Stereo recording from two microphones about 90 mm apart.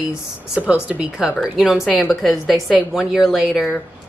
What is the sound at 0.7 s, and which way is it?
A woman's voice, 10° right (ahead or behind).